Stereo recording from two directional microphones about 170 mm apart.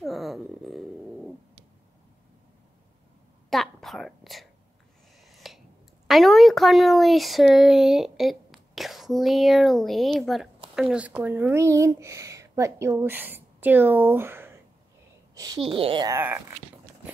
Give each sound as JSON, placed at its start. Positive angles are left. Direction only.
{"t": 0.0, "sound": "dog", "side_deg": 0}
{"t": 3.4, "sound": "whispering", "side_deg": 0}
{"t": 5.2, "sound": "a sound", "side_deg": 0}
{"t": 6.0, "sound": "a woman's voice", "side_deg": 0}
{"t": 16.1, "sound": "speech", "side_deg": -15}